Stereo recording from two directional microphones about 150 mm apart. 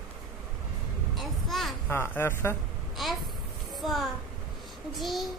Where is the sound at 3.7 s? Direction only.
Centre (ahead or behind).